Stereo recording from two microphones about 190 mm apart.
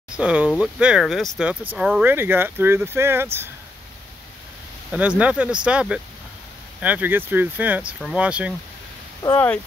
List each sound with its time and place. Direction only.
0.1 s speech: 5° right (ahead or behind)
4.9 s speech: 5° right (ahead or behind)